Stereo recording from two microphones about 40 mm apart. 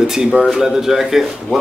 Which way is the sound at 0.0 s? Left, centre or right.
Centre.